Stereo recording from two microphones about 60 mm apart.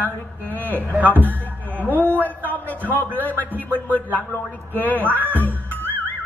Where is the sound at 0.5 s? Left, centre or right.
Left.